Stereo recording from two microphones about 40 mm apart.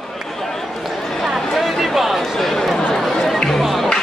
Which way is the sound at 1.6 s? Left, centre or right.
Centre.